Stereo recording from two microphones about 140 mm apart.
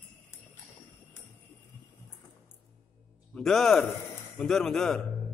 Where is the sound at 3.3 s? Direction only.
5° left (ahead or behind).